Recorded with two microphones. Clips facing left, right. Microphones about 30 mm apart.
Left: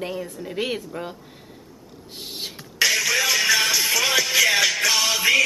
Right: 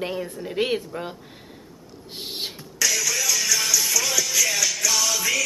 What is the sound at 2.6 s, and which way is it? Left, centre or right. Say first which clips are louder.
Music: left 5 dB; left.